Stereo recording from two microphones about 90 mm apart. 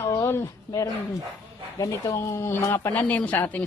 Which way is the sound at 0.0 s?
30° left (ahead or behind).